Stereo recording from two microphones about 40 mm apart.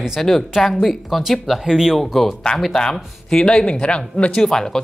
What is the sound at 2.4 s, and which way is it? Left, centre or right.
Speech, left.